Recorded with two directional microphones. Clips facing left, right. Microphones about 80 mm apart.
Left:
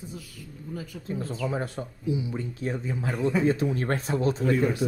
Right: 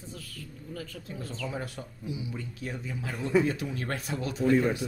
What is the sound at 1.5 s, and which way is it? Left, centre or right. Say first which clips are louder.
Speech: left 6 dB; left.